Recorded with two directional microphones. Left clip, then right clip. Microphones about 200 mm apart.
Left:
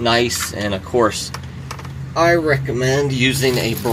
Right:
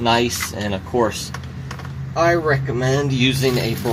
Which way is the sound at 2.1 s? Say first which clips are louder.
Left 2 dB; 45° left (ahead or behind).